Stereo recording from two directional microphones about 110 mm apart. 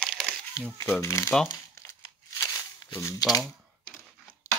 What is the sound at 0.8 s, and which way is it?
Speech, 25° left (ahead or behind).